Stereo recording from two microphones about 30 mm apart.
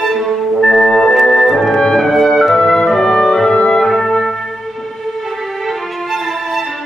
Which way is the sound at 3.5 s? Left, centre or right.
Left.